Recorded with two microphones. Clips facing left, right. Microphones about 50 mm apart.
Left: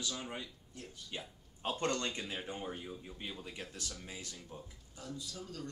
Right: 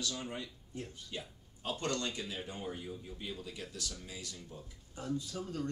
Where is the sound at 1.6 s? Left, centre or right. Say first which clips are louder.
Left 1 dB; left.